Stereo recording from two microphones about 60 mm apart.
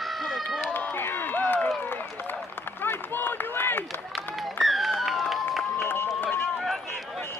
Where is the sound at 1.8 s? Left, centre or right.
Left.